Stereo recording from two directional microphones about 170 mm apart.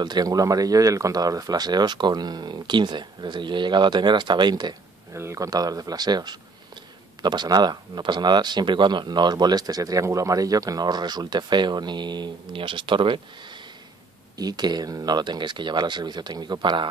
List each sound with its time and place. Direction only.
0.0 s speech: 25° right (ahead or behind)